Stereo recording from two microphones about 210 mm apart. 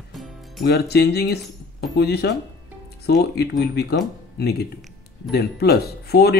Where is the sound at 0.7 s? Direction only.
50° left (ahead or behind).